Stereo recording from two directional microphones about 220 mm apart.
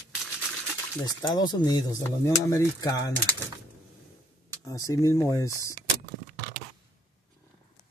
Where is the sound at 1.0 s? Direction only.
20° left (ahead or behind).